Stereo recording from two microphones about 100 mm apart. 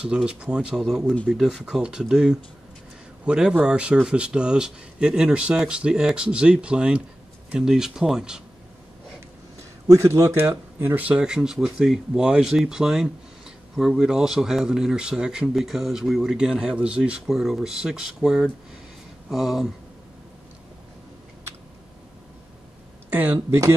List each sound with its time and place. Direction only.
0.0 s speech: 10° right (ahead or behind)
9.8 s speech: 30° right (ahead or behind); by 19.7 s 5° right (ahead or behind)
23.1 s speech: 20° right (ahead or behind)